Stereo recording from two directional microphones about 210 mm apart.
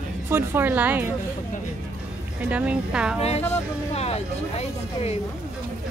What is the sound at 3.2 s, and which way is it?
Speech, 30° left (ahead or behind).